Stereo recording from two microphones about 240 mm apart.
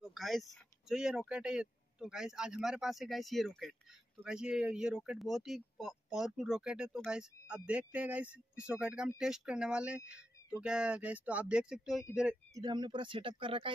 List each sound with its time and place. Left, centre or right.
0.0 s speech: centre
12.5 s speech: centre